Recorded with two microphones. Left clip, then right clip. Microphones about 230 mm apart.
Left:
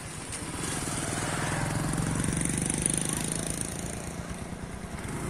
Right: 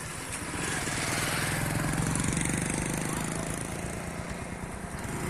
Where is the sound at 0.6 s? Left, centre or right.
Left.